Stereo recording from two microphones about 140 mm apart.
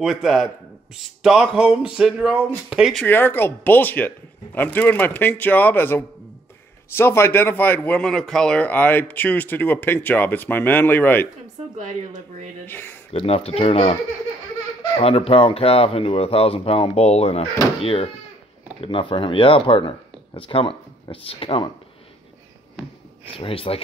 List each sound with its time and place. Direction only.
0.0 s speech: centre (ahead or behind)
3.1 s a man's voice: 15° left (ahead or behind)
12.6 s a man's voice: 15° left (ahead or behind)
13.1 s speech: 45° left (ahead or behind)
15.0 s speech: 45° left (ahead or behind)
23.3 s speech: 40° left (ahead or behind)